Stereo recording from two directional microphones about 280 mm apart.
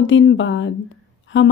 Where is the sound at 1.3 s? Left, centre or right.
Left.